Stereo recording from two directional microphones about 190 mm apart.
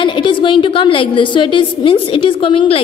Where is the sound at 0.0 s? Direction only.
25° left (ahead or behind).